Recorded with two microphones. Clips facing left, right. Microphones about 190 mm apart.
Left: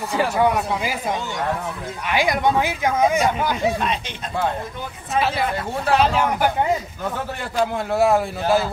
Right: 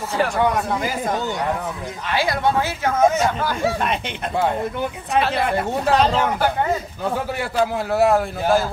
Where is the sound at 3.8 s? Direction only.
55° right (ahead or behind).